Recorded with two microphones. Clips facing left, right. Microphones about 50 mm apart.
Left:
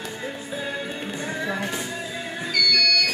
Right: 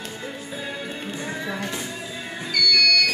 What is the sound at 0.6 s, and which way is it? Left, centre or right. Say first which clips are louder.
Music: left 2 dB; centre.